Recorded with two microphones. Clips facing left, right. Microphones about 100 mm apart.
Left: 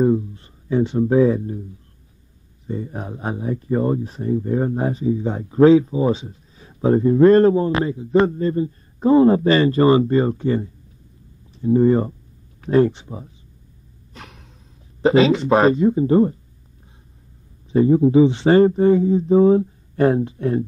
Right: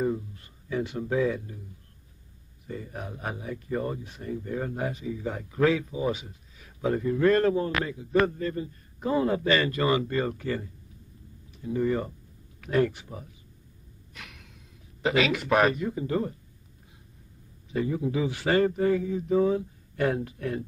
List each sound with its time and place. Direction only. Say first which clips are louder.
0.0 s speech: left 11 dB; 30° left (ahead or behind)
2.6 s speech: left 8 dB; 25° left (ahead or behind)
14.1 s gasp: left 6 dB; 35° left (ahead or behind)
15.0 s speech: left 10 dB; 30° left (ahead or behind)
17.6 s speech: left 13 dB; 30° left (ahead or behind)